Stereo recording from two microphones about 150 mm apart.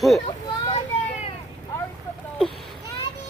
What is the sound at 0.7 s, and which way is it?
Vehicle, 40° left (ahead or behind).